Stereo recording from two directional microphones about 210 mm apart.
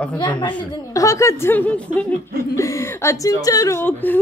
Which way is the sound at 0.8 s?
15° left (ahead or behind).